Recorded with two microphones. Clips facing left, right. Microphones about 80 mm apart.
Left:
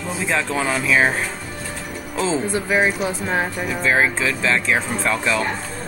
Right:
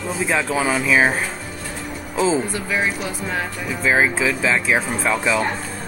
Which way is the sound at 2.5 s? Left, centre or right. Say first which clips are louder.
Left 3 dB; left.